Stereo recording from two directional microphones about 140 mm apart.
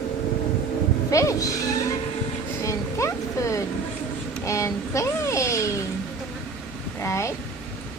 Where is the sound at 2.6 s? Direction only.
20° left (ahead or behind).